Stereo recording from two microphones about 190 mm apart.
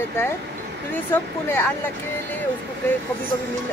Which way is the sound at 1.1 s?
10° left (ahead or behind).